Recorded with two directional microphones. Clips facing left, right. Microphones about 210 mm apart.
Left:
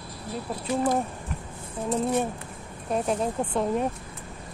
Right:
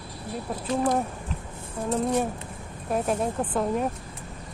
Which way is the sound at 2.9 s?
5° right (ahead or behind).